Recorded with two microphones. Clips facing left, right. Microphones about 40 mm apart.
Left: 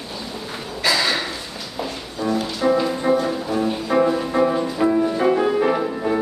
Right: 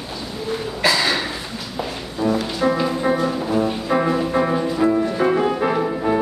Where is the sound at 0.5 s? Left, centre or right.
Centre.